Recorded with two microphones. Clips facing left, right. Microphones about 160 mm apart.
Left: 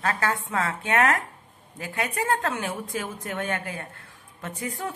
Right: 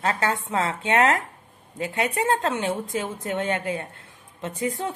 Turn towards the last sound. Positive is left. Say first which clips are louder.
# right 5 dB
turn(degrees=-25)  # may be behind; listen again after turning